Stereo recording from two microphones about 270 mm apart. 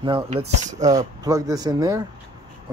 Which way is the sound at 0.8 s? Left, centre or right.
Centre.